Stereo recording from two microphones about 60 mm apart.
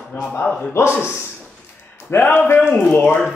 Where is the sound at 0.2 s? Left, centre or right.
Left.